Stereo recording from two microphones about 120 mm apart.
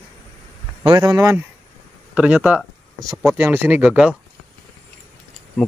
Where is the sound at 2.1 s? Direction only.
10° right (ahead or behind).